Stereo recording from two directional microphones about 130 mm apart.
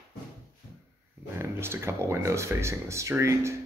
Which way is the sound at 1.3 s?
20° right (ahead or behind).